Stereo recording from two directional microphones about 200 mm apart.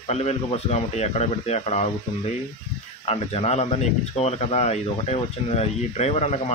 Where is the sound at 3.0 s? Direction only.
30° left (ahead or behind).